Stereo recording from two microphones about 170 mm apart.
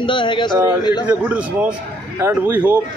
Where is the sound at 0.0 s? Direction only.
30° left (ahead or behind).